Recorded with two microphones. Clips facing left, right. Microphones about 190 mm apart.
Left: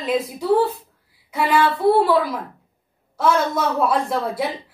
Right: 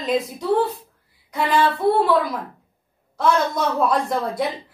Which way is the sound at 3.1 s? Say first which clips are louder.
Left 1 dB; 5° left (ahead or behind).